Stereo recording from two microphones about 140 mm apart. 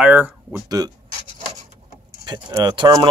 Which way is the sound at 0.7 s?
25° right (ahead or behind).